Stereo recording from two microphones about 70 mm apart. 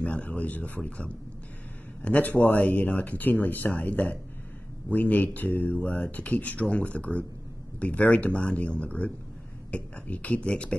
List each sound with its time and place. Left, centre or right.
0.0 s speech: centre